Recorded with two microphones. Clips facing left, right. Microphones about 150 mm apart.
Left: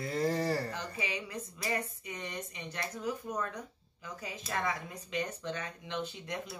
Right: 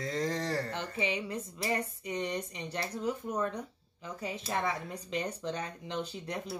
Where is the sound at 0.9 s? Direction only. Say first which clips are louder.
Right 5 dB; 30° right (ahead or behind).